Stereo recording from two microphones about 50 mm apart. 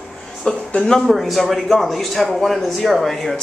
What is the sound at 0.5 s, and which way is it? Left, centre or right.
Speech, centre.